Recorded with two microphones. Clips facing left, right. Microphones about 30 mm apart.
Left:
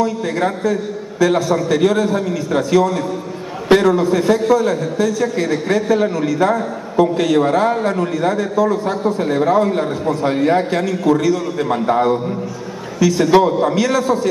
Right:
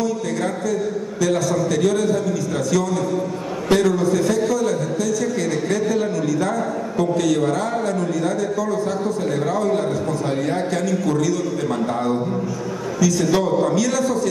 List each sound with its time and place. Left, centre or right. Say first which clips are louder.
0.0 s a man's voice: left 4 dB; left